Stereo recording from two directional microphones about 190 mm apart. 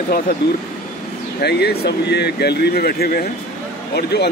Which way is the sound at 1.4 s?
60° left (ahead or behind).